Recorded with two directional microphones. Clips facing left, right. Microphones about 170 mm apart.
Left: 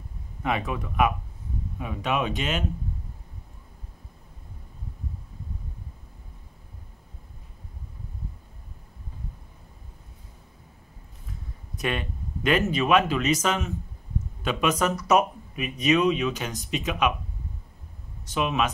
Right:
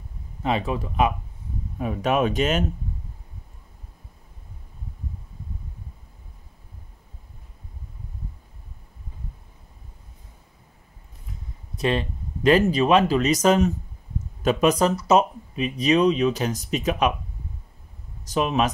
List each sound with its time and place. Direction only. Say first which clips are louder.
0.4 s speech: right 3 dB; 30° right (ahead or behind)
1.8 s speech: right 6 dB; 45° right (ahead or behind)
11.7 s speech: right 5 dB; 30° right (ahead or behind)
18.2 s speech: right 3 dB; 40° right (ahead or behind)